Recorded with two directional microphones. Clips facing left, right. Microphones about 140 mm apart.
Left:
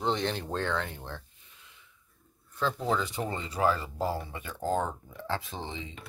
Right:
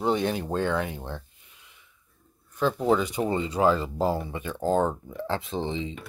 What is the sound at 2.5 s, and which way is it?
Speech, 15° right (ahead or behind).